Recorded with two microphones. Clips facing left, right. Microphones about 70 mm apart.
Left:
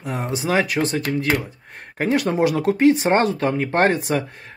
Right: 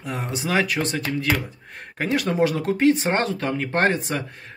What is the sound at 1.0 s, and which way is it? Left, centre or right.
Speech, left.